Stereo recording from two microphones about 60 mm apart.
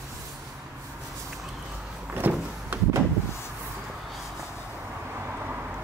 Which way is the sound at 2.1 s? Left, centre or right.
Right.